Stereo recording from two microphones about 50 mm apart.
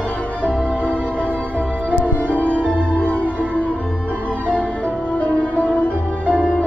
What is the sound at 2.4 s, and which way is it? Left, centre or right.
Music, right.